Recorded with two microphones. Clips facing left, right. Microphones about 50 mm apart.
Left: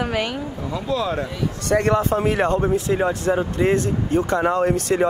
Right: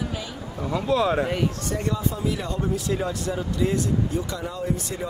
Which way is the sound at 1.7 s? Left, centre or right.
Left.